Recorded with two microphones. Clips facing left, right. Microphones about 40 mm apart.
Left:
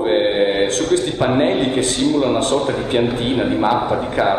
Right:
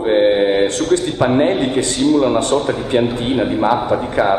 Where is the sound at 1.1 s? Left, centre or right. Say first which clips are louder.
Right 2 dB; centre.